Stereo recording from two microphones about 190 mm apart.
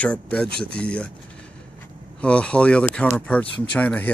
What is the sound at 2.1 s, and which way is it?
Speech, 5° left (ahead or behind).